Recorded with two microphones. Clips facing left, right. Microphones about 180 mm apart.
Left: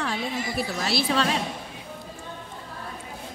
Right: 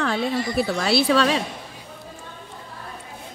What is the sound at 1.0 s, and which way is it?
Speech, 90° right.